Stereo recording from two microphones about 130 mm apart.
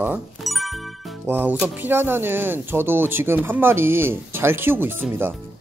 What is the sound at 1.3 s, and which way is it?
Speech, 15° right (ahead or behind).